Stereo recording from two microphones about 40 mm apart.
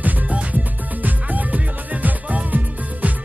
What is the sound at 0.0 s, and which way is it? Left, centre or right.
Music, right.